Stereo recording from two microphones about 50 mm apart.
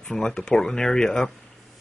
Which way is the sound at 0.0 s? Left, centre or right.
Centre.